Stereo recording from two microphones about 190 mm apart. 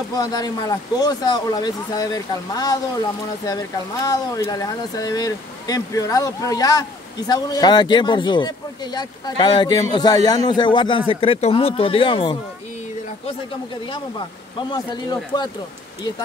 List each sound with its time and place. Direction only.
0.1 s speech: 20° left (ahead or behind)
15.3 s speech: 20° left (ahead or behind)